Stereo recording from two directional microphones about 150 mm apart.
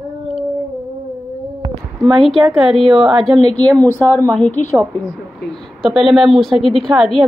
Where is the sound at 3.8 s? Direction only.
15° left (ahead or behind).